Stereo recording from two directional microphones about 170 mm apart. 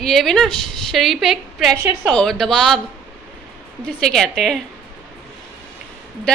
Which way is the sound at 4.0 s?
5° left (ahead or behind).